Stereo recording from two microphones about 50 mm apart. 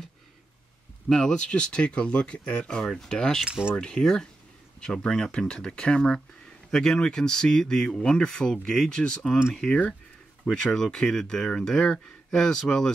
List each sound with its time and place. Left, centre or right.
1.0 s speech: centre
3.4 s speech: centre
3.7 s speech: centre